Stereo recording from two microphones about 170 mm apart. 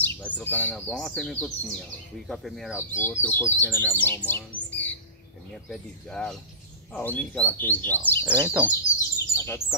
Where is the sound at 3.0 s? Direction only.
15° left (ahead or behind).